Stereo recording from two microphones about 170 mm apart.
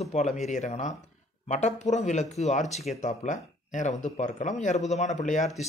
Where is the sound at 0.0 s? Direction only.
40° left (ahead or behind).